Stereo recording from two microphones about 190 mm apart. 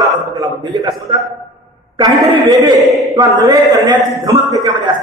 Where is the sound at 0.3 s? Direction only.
20° right (ahead or behind).